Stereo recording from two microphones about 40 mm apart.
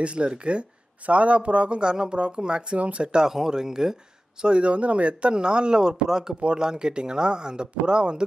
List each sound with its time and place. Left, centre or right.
0.0 s speech: right
4.4 s speech: right